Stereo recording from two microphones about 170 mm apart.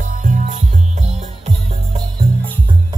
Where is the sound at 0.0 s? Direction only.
50° right (ahead or behind).